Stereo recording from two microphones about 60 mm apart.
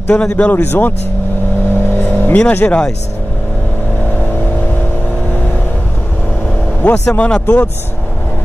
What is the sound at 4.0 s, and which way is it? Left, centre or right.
Vehicle, left.